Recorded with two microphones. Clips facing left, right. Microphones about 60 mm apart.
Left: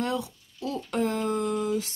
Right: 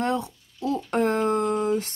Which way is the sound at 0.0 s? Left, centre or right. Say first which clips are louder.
Right 4 dB; right.